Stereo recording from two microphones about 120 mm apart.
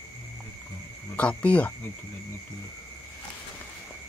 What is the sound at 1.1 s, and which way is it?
Speech, 10° left (ahead or behind).